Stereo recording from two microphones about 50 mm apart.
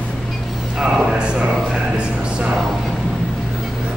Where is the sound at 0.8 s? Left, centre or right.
Centre.